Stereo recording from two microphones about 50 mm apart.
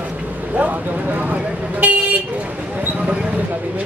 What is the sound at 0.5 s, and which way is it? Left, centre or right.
Vehicle, right.